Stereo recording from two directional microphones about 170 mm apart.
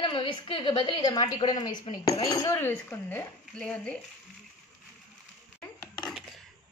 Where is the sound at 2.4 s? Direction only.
15° left (ahead or behind).